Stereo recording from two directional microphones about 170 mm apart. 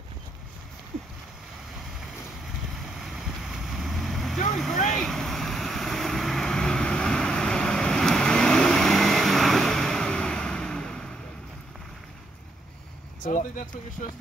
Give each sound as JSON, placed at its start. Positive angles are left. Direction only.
{"t": 3.0, "sound": "vehicle", "side_deg": 0}
{"t": 4.5, "sound": "boat", "side_deg": 0}
{"t": 4.8, "sound": "vehicle", "side_deg": 5}
{"t": 13.2, "sound": "speech", "side_deg": 50}